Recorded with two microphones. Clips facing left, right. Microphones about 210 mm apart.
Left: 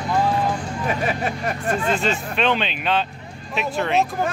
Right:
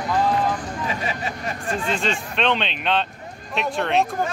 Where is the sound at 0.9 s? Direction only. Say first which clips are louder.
Left 6 dB; 55° left (ahead or behind).